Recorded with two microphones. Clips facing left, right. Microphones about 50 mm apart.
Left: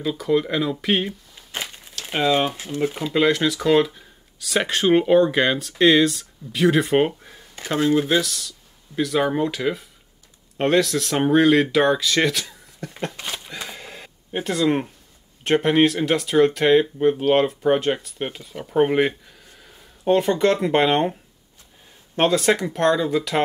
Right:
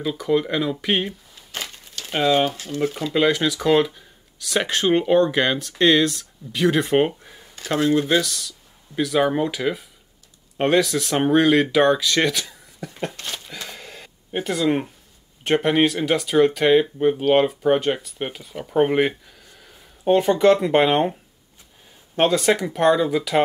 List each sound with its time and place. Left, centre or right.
0.0 s speech: centre
1.3 s crumpling: centre
2.1 s speech: centre
2.5 s speech: centre
3.1 s speech: centre
7.6 s speech: centre
7.9 s speech: centre
13.1 s a sound: centre
14.3 s speech: centre